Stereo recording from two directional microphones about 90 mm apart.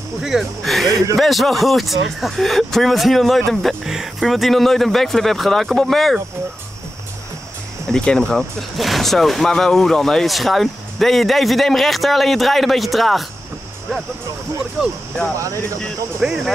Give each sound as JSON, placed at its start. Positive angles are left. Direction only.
{"t": 0.2, "sound": "speech", "side_deg": 0}
{"t": 7.8, "sound": "speech", "side_deg": 5}
{"t": 14.8, "sound": "speech", "side_deg": 5}
{"t": 15.3, "sound": "speech", "side_deg": -35}
{"t": 16.2, "sound": "speech", "side_deg": -5}